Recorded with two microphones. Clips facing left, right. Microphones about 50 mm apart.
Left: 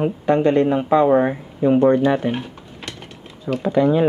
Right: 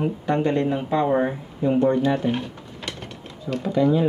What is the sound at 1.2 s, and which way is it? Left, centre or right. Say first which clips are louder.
Speech: left 4 dB; left.